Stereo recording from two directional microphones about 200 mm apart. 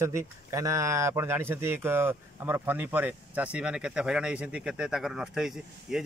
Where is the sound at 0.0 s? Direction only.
15° right (ahead or behind).